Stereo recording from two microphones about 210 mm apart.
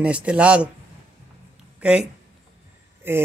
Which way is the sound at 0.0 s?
5° right (ahead or behind).